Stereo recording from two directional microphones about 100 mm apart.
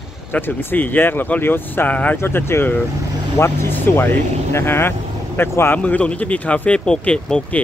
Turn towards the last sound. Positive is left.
turn(degrees=5)  # may be behind; listen again after turning